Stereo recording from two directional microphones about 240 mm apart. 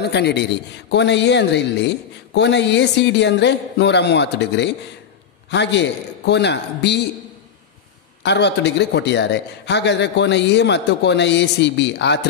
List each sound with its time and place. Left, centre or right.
0.0 s a man's voice: left
8.2 s a man's voice: left